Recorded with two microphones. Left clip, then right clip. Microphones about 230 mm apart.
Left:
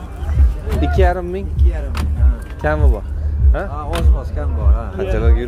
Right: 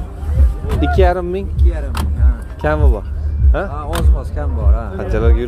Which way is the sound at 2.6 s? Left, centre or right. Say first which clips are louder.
Right 2 dB; centre.